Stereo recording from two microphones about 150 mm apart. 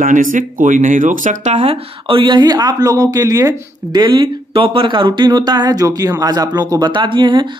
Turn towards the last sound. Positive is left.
turn(degrees=-30)  # may be behind; listen again after turning